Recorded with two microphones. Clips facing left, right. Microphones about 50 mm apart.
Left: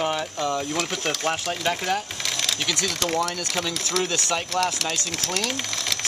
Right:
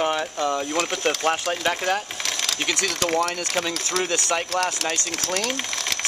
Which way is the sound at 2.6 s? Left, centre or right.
Right.